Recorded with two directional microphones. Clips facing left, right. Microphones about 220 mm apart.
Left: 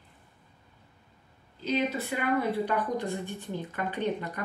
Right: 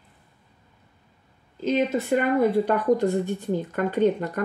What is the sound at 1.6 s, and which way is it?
Speech, 50° right (ahead or behind).